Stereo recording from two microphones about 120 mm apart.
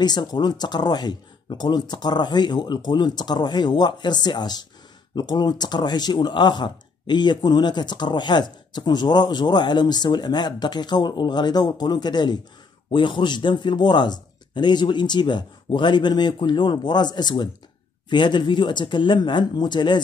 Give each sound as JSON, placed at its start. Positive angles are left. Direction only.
{"t": 0.0, "sound": "speech", "side_deg": 35}